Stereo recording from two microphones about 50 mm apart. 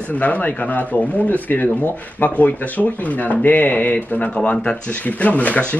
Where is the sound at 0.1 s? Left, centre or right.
Left.